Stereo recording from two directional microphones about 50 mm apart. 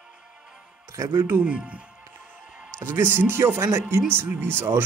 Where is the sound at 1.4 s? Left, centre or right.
Right.